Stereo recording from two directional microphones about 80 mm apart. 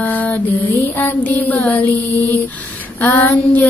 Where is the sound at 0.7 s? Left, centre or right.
Left.